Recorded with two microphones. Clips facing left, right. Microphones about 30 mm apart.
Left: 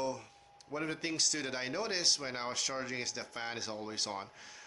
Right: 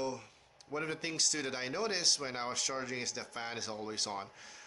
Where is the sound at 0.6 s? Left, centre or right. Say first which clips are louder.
Left 1 dB; centre.